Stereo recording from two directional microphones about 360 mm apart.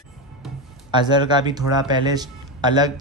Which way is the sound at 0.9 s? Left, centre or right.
Centre.